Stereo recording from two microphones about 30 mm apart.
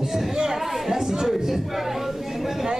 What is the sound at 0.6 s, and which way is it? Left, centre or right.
Chatter, centre.